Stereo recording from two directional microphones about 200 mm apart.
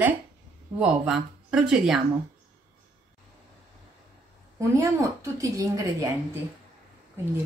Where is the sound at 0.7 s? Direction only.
5° right (ahead or behind).